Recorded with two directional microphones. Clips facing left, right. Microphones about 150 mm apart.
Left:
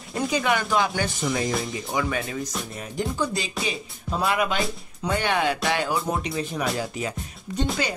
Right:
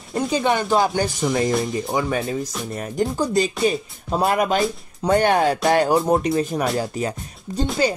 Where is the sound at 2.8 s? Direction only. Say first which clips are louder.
Right 5 dB; 45° right (ahead or behind).